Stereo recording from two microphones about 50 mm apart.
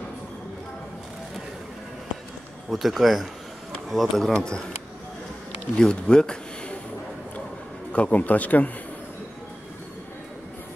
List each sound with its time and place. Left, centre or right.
2.7 s speech: centre
4.3 s speech: centre
5.8 s speech: centre
7.9 s speech: left